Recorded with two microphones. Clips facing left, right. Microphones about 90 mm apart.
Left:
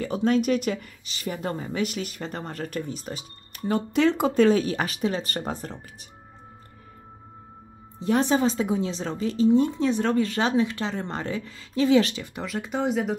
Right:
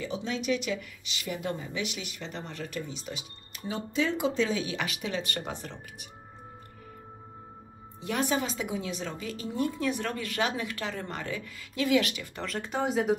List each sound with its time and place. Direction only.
0.0 s a woman's voice: 50° left (ahead or behind)
3.6 s a woman's voice: 55° left (ahead or behind); by 5.8 s 40° left (ahead or behind)
8.0 s speech: 30° left (ahead or behind)
12.4 s speech: 15° left (ahead or behind)
12.6 s speech: centre (ahead or behind)